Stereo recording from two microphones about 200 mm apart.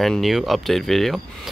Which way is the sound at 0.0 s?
Centre (ahead or behind).